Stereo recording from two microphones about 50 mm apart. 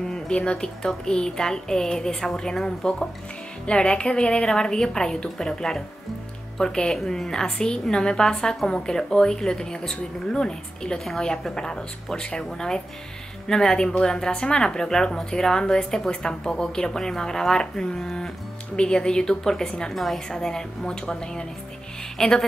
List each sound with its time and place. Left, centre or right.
0.1 s a woman's voice: centre